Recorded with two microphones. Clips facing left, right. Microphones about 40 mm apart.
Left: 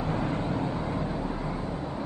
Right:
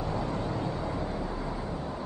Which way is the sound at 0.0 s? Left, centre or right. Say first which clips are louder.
Left 2 dB; left.